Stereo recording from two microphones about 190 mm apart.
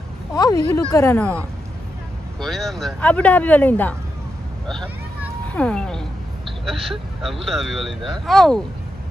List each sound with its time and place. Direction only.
0.3 s speech: 20° left (ahead or behind)
2.4 s speech: centre (ahead or behind)
5.5 s speech: 5° left (ahead or behind)